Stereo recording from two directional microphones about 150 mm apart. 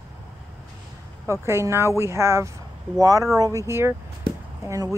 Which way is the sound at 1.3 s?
20° right (ahead or behind).